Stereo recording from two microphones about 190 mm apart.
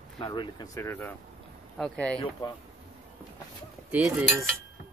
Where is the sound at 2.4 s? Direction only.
25° left (ahead or behind).